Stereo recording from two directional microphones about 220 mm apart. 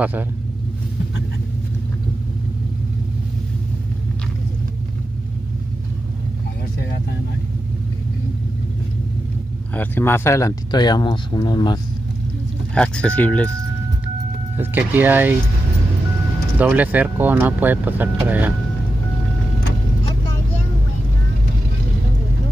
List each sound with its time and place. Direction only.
0.0 s speech: 10° right (ahead or behind)
9.8 s speech: 10° left (ahead or behind)
12.7 s speech: 5° left (ahead or behind)
14.6 s speech: 10° right (ahead or behind)
16.5 s speech: 5° right (ahead or behind)